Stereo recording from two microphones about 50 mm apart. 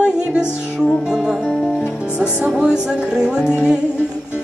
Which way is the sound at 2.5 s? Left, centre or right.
Centre.